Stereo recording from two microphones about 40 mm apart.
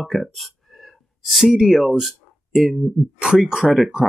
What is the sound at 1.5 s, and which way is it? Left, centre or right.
Speech, centre.